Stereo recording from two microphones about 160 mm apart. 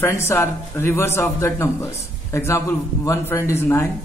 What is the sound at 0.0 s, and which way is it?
Speech, 15° left (ahead or behind).